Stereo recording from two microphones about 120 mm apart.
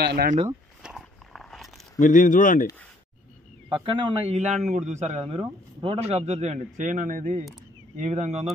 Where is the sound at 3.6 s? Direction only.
45° right (ahead or behind).